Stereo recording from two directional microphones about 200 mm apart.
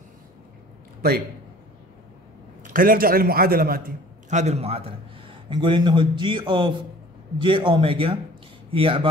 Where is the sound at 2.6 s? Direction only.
45° right (ahead or behind).